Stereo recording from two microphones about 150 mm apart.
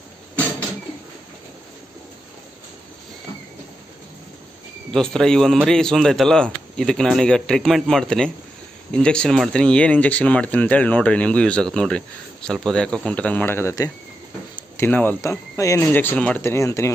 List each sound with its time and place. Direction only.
4.9 s a man's voice: 5° left (ahead or behind)